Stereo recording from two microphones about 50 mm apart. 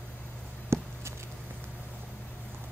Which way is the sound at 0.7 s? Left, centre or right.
Right.